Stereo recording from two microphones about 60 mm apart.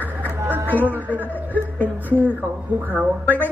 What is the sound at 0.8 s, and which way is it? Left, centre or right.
Music, right.